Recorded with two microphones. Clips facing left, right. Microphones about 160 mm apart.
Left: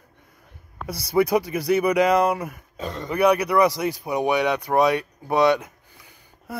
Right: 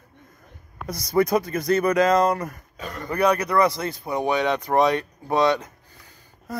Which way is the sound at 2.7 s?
25° left (ahead or behind).